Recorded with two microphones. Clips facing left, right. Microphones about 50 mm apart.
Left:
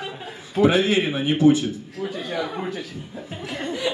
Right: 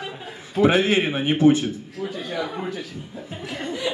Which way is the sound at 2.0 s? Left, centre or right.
Left.